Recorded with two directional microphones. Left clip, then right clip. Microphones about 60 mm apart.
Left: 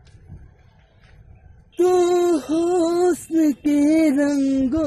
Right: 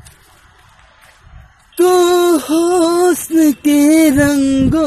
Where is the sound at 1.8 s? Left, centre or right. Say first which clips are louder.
Right 7 dB; centre.